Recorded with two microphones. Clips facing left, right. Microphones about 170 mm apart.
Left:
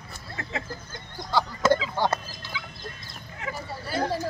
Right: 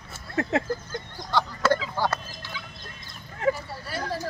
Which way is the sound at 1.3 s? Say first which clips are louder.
Left 1 dB; 10° left (ahead or behind).